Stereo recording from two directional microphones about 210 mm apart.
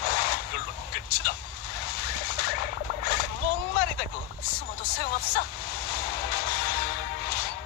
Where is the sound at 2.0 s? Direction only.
50° left (ahead or behind).